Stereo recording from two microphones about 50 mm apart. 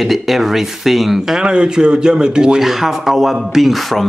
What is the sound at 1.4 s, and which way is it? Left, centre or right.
Speech, centre.